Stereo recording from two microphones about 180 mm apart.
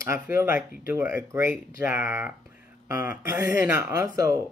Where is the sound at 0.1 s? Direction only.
15° right (ahead or behind).